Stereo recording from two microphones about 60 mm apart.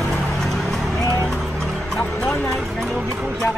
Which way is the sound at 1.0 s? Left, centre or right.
Right.